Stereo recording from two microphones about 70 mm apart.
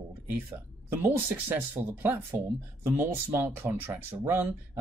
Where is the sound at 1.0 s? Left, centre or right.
Right.